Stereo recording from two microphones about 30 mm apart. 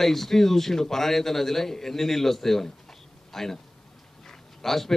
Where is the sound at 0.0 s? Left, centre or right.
Centre.